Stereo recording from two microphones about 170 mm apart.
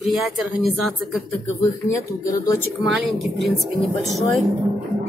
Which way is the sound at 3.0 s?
Centre (ahead or behind).